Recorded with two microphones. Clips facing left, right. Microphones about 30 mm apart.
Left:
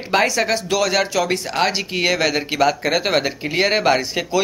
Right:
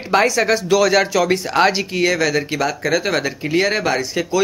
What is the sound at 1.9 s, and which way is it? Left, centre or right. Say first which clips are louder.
Speech: right 1 dB; left.